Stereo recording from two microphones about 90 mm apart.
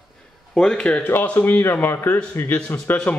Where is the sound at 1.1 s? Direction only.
25° left (ahead or behind).